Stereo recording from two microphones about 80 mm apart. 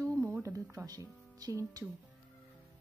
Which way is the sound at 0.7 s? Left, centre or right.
Right.